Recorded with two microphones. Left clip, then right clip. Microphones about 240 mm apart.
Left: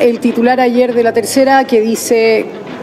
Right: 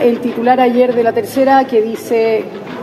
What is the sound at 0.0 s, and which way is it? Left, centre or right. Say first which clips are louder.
Speech: left 2 dB; left.